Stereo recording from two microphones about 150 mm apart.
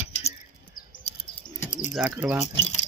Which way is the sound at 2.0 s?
10° right (ahead or behind).